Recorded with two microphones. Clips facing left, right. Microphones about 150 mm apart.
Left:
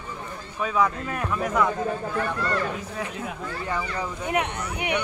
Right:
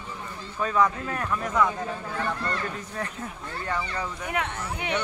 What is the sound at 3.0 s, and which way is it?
Speech, 10° left (ahead or behind).